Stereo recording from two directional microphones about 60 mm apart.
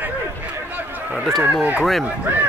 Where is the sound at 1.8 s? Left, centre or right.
Centre.